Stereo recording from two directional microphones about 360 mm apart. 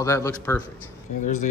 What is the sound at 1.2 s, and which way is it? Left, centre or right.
Speech, centre.